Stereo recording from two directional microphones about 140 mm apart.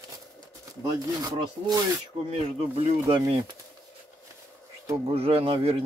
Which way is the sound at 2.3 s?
45° right (ahead or behind).